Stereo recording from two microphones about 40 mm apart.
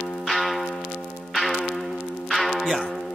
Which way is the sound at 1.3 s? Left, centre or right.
Centre.